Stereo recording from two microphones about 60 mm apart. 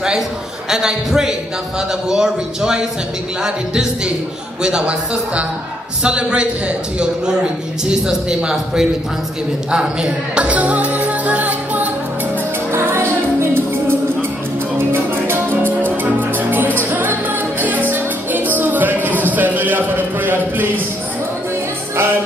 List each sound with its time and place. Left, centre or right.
0.7 s a man's voice: centre
7.8 s a man's voice: centre
9.7 s music: centre
12.7 s music: right